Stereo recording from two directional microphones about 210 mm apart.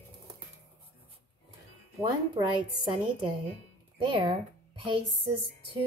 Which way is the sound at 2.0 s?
20° right (ahead or behind).